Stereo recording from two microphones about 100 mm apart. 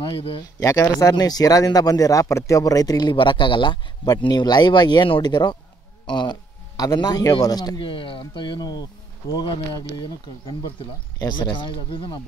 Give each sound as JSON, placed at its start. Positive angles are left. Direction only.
{"t": 0.0, "sound": "speech", "side_deg": 65}
{"t": 0.4, "sound": "speech", "side_deg": 35}
{"t": 7.8, "sound": "speech", "side_deg": 60}